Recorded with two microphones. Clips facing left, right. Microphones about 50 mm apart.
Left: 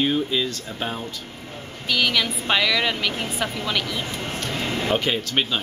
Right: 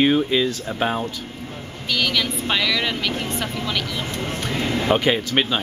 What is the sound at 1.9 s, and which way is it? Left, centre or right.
Speech, centre.